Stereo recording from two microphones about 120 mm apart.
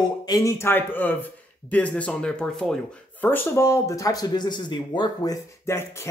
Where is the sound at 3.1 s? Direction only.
15° left (ahead or behind).